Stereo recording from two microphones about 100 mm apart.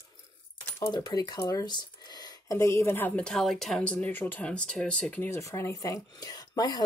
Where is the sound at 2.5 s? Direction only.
25° left (ahead or behind).